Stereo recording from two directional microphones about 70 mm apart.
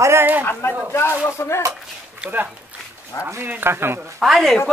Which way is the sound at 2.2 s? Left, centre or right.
Centre.